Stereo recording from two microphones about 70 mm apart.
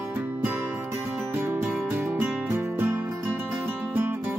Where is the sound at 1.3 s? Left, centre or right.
Right.